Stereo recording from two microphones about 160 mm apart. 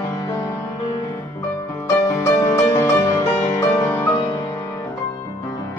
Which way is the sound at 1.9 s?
20° left (ahead or behind).